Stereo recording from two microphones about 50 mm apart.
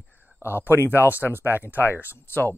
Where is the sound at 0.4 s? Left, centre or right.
Left.